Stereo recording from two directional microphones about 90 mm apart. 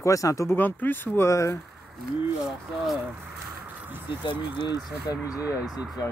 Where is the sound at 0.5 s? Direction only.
20° left (ahead or behind); by 1.6 s 35° left (ahead or behind).